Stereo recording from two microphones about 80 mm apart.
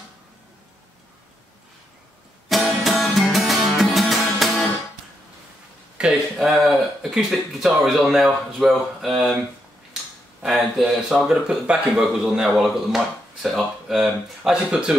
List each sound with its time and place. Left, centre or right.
2.5 s music: centre
6.0 s speech: centre
6.5 s speech: centre
10.4 s speech: centre